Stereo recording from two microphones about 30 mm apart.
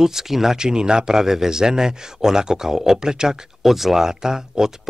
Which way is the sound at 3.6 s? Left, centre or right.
Centre.